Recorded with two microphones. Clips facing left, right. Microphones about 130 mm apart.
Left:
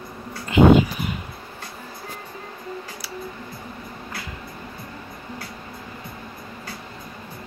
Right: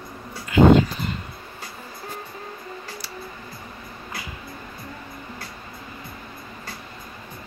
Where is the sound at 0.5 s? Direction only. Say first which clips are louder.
Even; 20° left (ahead or behind).